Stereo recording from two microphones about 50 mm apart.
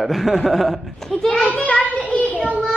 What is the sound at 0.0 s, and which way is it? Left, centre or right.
Speech, centre.